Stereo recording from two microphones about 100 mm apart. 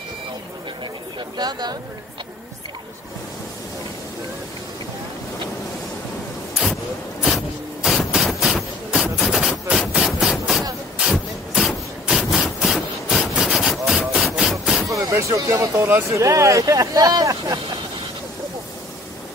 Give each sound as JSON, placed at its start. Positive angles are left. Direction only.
{"t": 1.4, "sound": "speech", "side_deg": -45}
{"t": 7.2, "sound": "a sound", "side_deg": 0}
{"t": 14.9, "sound": "speech", "side_deg": -30}